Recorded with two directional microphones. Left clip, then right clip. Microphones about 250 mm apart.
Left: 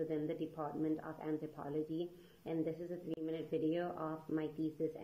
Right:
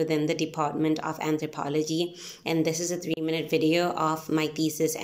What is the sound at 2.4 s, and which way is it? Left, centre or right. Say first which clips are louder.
Speech: right 14 dB; right.